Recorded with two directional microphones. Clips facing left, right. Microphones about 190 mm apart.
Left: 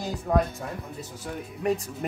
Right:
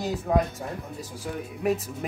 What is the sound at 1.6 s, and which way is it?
Speech, 5° right (ahead or behind).